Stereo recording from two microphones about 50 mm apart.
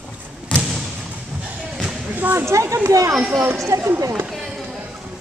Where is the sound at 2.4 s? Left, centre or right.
Right.